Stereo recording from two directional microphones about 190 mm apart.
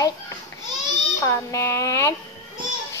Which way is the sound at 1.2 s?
15° left (ahead or behind).